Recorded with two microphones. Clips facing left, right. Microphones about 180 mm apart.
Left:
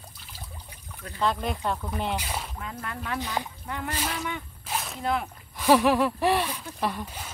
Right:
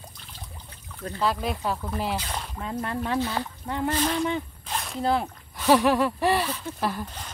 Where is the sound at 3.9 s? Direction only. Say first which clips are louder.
Right 7 dB; 5° left (ahead or behind).